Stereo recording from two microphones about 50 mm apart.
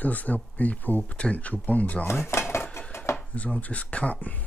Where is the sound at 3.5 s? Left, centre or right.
Left.